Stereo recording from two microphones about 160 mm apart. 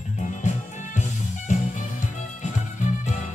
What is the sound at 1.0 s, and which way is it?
Music, 50° left (ahead or behind).